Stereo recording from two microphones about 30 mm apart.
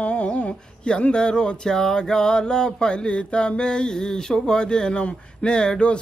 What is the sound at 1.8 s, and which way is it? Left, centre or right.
Mantra, left.